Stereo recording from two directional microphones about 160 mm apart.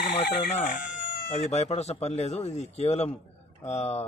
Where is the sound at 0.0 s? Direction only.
90° left.